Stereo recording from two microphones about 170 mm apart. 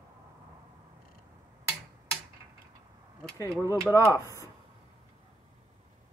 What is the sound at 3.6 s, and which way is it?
Speech, 20° left (ahead or behind).